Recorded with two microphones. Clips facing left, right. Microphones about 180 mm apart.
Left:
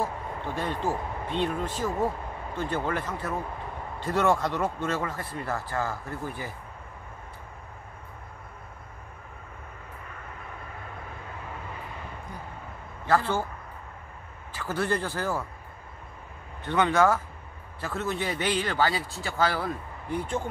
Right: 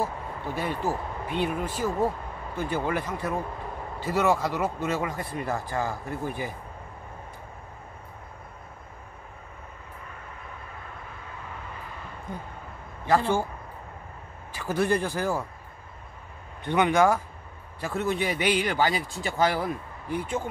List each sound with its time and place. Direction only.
0.6 s a man's voice: 10° right (ahead or behind)
13.0 s speech: 15° right (ahead or behind)
14.5 s speech: 15° right (ahead or behind)
16.6 s a man's voice: 15° right (ahead or behind)